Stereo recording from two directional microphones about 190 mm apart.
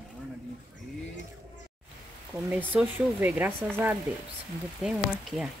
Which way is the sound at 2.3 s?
10° right (ahead or behind).